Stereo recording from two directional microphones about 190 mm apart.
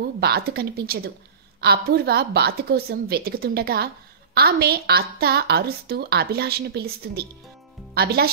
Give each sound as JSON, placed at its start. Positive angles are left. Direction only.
{"t": 0.2, "sound": "a woman's voice", "side_deg": -55}